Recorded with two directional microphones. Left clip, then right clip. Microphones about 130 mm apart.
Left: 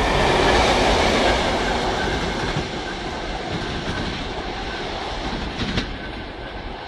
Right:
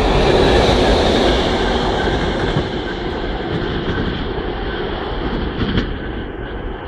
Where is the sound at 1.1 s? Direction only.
15° left (ahead or behind).